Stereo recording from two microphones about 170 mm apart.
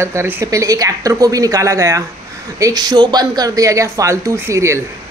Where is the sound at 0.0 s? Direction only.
15° right (ahead or behind).